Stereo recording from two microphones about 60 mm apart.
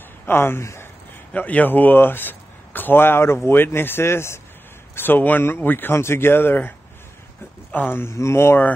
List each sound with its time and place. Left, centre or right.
0.3 s speech: left
1.3 s a man's voice: left
4.9 s a man's voice: left
5.9 s a man's voice: left
7.7 s speech: left